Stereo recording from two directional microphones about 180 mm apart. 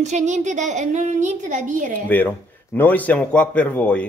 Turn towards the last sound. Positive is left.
turn(degrees=5)  # may be behind; listen again after turning